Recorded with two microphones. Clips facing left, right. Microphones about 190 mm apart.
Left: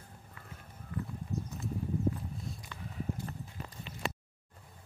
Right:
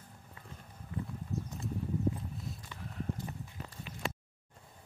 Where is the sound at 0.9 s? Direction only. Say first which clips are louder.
Left 1 dB; 25° right (ahead or behind).